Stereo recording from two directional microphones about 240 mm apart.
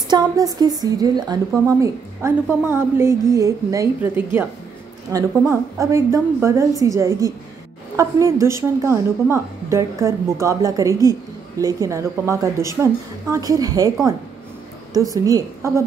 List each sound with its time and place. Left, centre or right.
0.1 s a woman's voice: centre
15.0 s a woman's voice: centre